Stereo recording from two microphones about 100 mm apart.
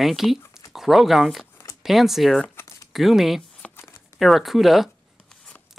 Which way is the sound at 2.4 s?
25° left (ahead or behind).